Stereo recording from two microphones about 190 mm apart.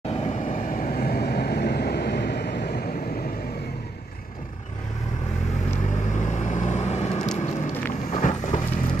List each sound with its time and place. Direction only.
0.1 s vehicle: 35° left (ahead or behind); by 2.8 s 55° left (ahead or behind)
6.0 s vehicle: 40° left (ahead or behind)
7.2 s vehicle: 10° left (ahead or behind)
8.1 s clip-clop: 40° left (ahead or behind)